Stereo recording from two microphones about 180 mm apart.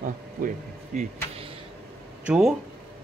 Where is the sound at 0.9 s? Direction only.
30° right (ahead or behind).